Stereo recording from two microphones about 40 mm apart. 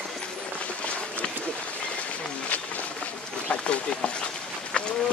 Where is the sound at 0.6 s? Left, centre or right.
Left.